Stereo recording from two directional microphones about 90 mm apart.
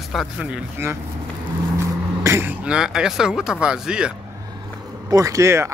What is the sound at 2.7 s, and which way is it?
Speech, 5° right (ahead or behind).